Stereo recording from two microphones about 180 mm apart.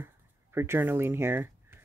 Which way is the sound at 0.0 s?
15° right (ahead or behind).